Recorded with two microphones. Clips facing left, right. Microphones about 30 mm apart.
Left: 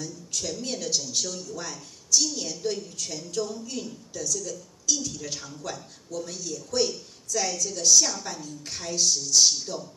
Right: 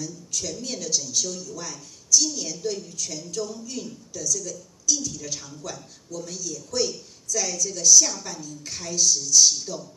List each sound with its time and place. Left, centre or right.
0.0 s a woman's voice: left
9.7 s a man's voice: left